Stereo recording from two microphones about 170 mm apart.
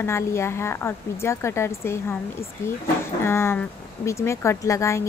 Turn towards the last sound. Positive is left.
turn(degrees=15)  # may be behind; listen again after turning